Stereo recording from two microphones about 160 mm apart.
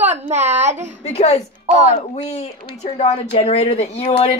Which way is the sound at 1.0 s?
40° left (ahead or behind).